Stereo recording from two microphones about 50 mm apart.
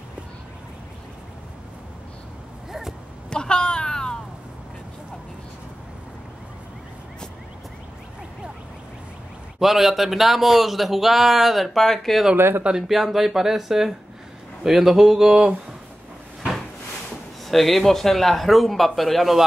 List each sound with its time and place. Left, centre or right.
3.3 s a sound: centre
9.6 s speech: centre
12.4 s speech: right
12.8 s speech: centre
17.5 s speech: centre